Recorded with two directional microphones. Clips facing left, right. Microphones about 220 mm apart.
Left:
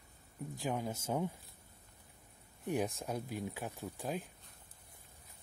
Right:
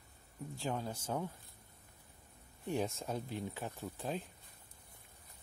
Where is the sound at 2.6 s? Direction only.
15° left (ahead or behind).